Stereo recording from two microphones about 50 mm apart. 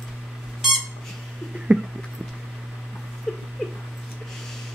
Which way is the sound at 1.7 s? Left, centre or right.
Right.